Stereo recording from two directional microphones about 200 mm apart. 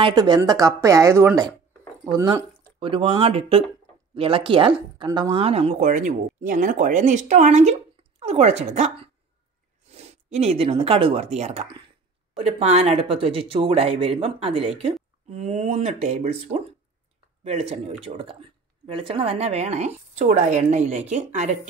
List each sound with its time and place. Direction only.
0.0 s speech: 20° right (ahead or behind)